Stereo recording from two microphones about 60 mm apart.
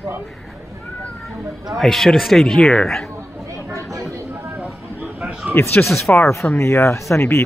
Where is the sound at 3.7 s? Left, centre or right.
Right.